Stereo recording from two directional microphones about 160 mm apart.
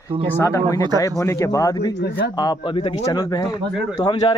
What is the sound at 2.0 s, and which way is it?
Speech, 85° left.